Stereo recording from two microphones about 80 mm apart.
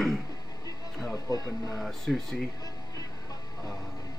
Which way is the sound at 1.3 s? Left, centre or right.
Left.